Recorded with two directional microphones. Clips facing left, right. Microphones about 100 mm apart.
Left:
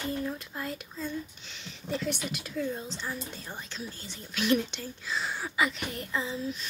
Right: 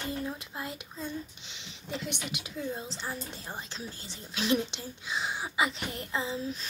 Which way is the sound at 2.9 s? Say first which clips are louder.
Left 1 dB; 30° right (ahead or behind).